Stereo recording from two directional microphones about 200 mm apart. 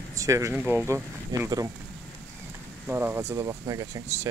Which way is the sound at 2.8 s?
10° right (ahead or behind).